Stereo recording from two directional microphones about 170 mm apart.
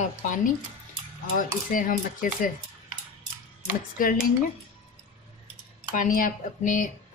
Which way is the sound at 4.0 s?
55° left (ahead or behind).